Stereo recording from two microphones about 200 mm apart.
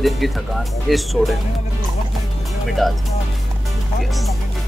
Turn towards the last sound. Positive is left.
turn(degrees=0)  # may be behind; listen again after turning